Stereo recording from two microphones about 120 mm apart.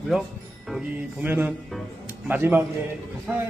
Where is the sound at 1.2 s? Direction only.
15° right (ahead or behind).